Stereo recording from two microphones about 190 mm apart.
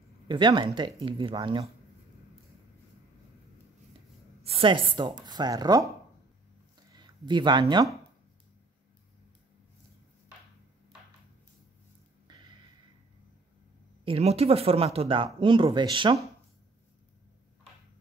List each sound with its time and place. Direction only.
0.3 s speech: 25° right (ahead or behind)
4.4 s a woman's voice: 30° right (ahead or behind)
7.0 s speech: 25° right (ahead or behind)
12.3 s a sound: 25° right (ahead or behind)
14.0 s speech: 30° right (ahead or behind)